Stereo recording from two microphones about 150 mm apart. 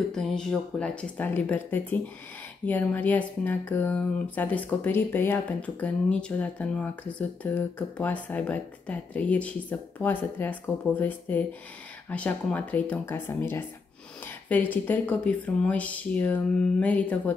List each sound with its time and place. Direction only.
0.1 s speech: 5° left (ahead or behind)